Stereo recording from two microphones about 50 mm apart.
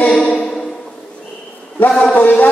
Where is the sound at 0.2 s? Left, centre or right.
Left.